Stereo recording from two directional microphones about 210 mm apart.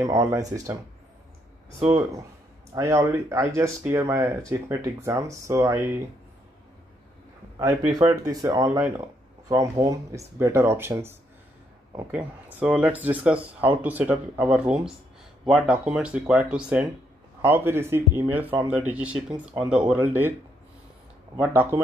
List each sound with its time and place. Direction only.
0.0 s speech: 15° right (ahead or behind)
2.7 s speech: 15° right (ahead or behind)
7.5 s speech: 15° right (ahead or behind)
21.4 s speech: 10° right (ahead or behind)